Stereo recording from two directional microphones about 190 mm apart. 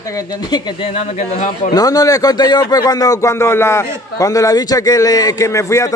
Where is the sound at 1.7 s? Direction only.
20° left (ahead or behind).